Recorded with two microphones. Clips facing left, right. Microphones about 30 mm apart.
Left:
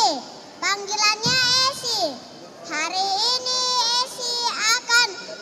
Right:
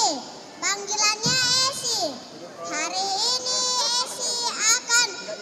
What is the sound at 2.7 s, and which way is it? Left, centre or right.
Child singing, left.